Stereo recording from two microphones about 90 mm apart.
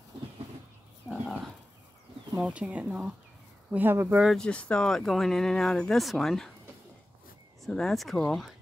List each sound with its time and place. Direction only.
1.0 s dog: centre (ahead or behind)
2.4 s speech: 10° right (ahead or behind)
3.7 s speech: 25° right (ahead or behind)
4.4 s speech: 10° left (ahead or behind)
7.6 s speech: 5° left (ahead or behind)